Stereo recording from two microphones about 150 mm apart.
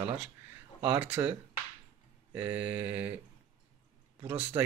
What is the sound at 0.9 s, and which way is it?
Speech, 15° right (ahead or behind).